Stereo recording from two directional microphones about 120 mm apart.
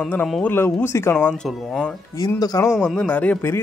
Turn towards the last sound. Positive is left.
turn(degrees=15)  # may be behind; listen again after turning